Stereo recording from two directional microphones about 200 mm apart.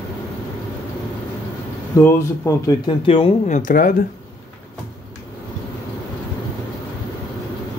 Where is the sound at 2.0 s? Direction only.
10° left (ahead or behind).